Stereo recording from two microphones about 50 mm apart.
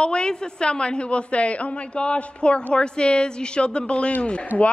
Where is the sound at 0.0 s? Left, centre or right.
Centre.